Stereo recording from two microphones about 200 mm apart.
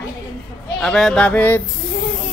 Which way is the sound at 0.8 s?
Centre (ahead or behind).